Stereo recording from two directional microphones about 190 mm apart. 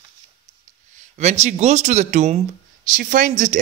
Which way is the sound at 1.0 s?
35° right (ahead or behind).